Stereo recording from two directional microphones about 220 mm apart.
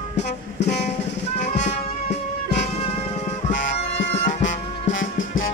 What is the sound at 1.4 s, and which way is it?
Music, 30° left (ahead or behind).